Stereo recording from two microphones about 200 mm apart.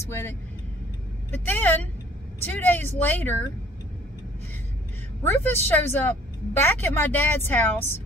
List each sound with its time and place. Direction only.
0.0 s a woman's voice: 15° left (ahead or behind)
5.2 s a woman's voice: 10° left (ahead or behind)